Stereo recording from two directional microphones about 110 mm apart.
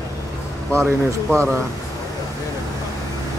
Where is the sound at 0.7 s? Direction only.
25° right (ahead or behind).